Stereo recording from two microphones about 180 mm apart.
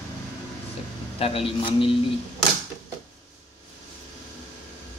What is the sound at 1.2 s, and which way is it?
Speech, 30° left (ahead or behind).